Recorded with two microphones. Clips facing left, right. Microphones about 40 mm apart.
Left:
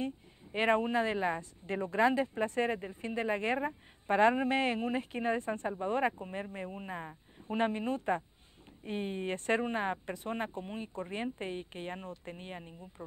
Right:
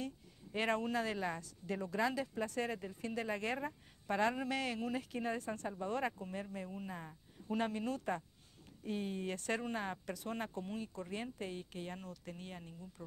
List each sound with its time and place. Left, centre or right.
0.0 s a woman's voice: left